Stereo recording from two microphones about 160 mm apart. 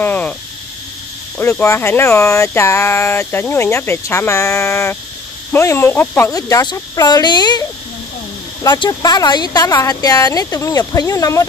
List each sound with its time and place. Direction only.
0.0 s cricket: 10° left (ahead or behind)
1.4 s speech: 15° left (ahead or behind)
8.6 s speech: 30° left (ahead or behind)